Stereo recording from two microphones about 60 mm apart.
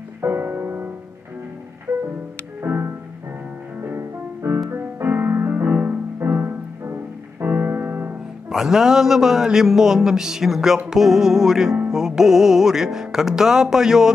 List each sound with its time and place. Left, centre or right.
0.2 s music: right
2.6 s music: right
3.9 s music: right
6.1 s music: right
8.5 s a man's voice: centre